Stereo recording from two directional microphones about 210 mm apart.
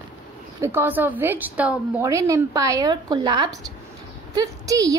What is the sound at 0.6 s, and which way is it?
A woman's voice, 10° right (ahead or behind).